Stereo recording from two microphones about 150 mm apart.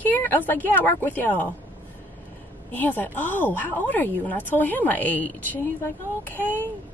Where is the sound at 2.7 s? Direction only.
10° left (ahead or behind).